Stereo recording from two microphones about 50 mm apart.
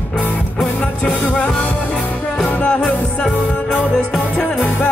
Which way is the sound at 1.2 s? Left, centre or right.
Left.